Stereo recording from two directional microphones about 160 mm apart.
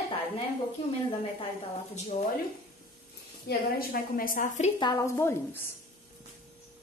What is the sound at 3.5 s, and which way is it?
Speech, 80° left.